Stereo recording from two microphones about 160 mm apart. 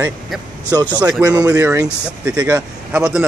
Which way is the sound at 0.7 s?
20° right (ahead or behind).